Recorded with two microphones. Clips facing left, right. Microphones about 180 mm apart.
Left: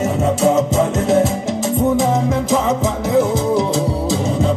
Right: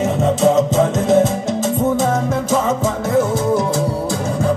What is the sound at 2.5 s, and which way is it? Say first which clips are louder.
Music: right 1 dB; 20° left (ahead or behind).